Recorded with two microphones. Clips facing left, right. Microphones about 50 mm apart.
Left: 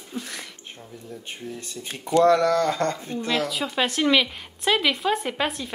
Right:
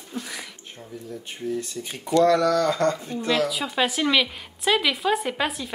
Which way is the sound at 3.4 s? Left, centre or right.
Centre.